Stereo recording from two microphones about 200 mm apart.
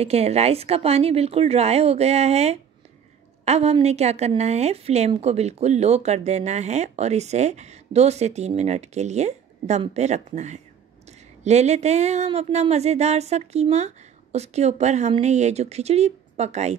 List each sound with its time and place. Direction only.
0.0 s a woman's voice: 30° right (ahead or behind)